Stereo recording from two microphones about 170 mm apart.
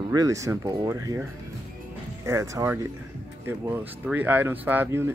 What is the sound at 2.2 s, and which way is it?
Speech, 15° right (ahead or behind).